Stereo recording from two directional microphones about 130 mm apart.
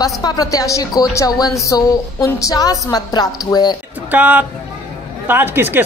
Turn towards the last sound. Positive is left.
turn(degrees=-15)  # may be behind; listen again after turning